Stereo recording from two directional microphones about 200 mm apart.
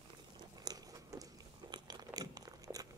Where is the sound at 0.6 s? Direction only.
20° right (ahead or behind).